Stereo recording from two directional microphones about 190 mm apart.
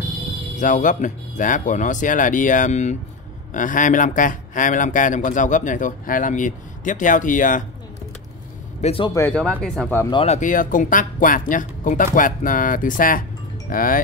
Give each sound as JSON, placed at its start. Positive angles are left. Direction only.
{"t": 0.6, "sound": "speech", "side_deg": 40}
{"t": 8.8, "sound": "speech", "side_deg": 30}
{"t": 9.3, "sound": "speech", "side_deg": 5}
{"t": 10.2, "sound": "speech", "side_deg": 40}